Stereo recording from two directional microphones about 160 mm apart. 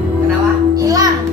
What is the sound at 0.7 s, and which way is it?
Music, 20° right (ahead or behind).